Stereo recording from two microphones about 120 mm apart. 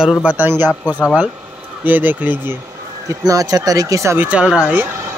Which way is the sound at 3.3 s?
30° right (ahead or behind).